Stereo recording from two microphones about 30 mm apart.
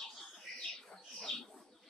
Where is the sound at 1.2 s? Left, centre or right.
Centre.